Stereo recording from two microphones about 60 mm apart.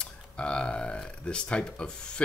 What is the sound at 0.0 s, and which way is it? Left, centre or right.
Burping, centre.